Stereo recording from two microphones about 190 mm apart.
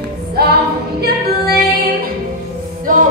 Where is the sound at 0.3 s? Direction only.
55° right (ahead or behind).